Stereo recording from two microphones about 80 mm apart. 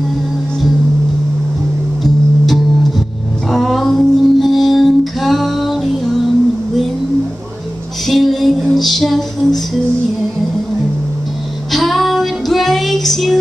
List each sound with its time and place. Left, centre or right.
2.0 s music: centre
8.1 s music: centre
11.7 s female singing: centre